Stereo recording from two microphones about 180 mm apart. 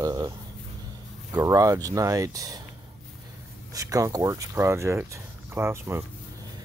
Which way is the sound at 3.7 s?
20° right (ahead or behind).